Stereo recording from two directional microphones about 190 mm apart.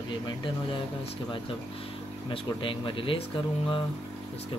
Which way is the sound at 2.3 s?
25° left (ahead or behind).